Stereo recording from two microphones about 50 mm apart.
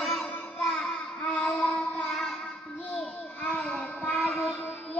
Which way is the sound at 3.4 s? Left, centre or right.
Left.